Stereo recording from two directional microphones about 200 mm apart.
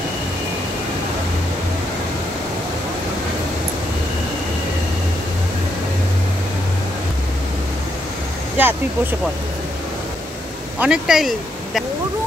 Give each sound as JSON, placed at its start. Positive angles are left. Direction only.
{"t": 8.6, "sound": "speech", "side_deg": -10}
{"t": 10.8, "sound": "speech", "side_deg": -5}